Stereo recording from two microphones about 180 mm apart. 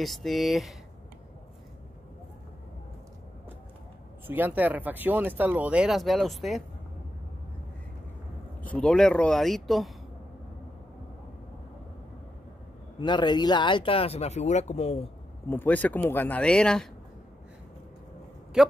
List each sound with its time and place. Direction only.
0.0 s speech: centre (ahead or behind)
4.3 s speech: 10° right (ahead or behind)
8.6 s speech: 5° left (ahead or behind)
13.0 s speech: 25° left (ahead or behind)
15.5 s speech: 10° left (ahead or behind)
18.6 s speech: 5° right (ahead or behind)